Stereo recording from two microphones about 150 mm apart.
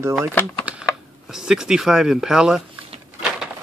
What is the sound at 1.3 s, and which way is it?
Speech, 5° right (ahead or behind).